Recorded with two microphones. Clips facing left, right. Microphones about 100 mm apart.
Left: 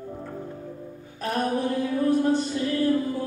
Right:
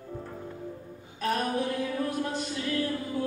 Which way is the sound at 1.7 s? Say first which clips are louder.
Left 7 dB; 30° left (ahead or behind).